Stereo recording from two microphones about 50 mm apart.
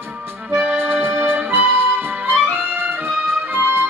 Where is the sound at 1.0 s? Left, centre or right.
Right.